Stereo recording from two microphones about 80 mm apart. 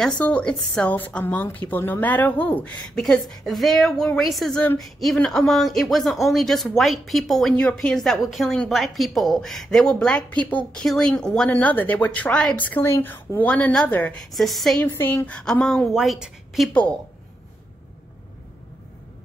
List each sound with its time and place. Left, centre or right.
0.2 s a woman's voice: centre
0.9 s speech: left
3.0 s a woman's voice: centre
11.5 s speech: left
14.2 s speech: centre
14.8 s speech: left
15.9 s speech: centre